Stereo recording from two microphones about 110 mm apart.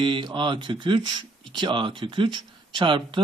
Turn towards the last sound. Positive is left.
turn(degrees=-45)  # may be behind; listen again after turning